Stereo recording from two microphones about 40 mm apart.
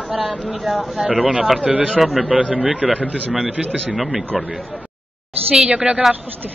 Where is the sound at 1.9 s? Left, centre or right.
Centre.